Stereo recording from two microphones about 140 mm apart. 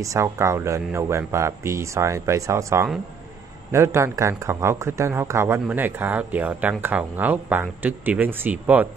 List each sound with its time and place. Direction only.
0.0 s speech: 20° right (ahead or behind)